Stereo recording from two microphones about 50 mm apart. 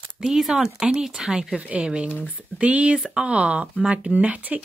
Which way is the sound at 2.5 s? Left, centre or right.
Right.